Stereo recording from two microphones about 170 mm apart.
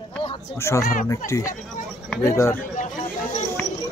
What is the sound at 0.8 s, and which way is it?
Speech, 50° left (ahead or behind).